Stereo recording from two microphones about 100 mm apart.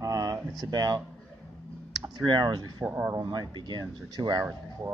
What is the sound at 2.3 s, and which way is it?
Speech, 45° right (ahead or behind).